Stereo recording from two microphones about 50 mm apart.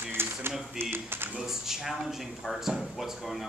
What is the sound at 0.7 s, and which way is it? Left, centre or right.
Speech, right.